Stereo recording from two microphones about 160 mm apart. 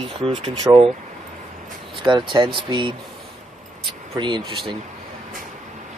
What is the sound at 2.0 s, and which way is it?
Speech, 30° right (ahead or behind).